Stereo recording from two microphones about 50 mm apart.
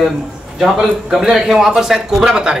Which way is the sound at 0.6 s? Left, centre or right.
Centre.